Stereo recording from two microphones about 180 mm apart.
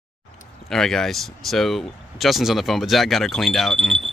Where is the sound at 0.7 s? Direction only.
5° left (ahead or behind).